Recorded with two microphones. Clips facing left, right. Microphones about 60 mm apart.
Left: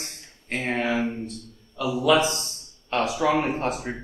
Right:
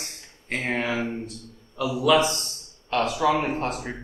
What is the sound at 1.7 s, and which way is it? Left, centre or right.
Speech, centre.